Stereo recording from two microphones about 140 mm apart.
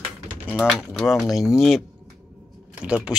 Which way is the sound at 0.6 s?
5° right (ahead or behind).